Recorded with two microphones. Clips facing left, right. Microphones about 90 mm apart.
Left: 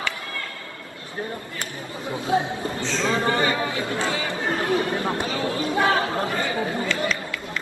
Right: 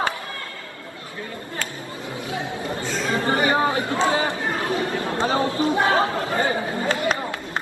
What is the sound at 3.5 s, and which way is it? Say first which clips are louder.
Chatter: right 5 dB; 30° right (ahead or behind).